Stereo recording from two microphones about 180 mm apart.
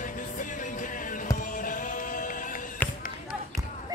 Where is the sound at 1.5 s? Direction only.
45° left (ahead or behind).